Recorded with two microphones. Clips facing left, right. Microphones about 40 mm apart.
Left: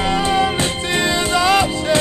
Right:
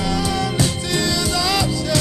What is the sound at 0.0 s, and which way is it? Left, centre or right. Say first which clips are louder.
Music: left 5 dB; left.